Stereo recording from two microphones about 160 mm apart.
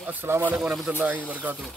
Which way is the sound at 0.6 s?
5° right (ahead or behind).